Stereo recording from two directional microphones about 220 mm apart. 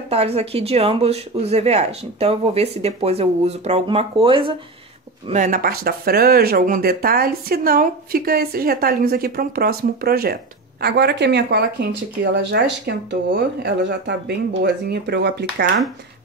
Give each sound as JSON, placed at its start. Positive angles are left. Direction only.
{"t": 0.1, "sound": "speech", "side_deg": -30}
{"t": 5.3, "sound": "speech", "side_deg": -35}